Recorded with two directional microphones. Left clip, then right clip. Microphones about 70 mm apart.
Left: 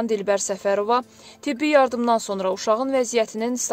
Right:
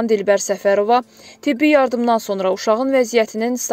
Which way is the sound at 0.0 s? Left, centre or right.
Right.